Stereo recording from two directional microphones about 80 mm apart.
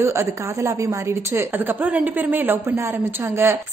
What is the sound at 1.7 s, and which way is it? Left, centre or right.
A woman's voice, right.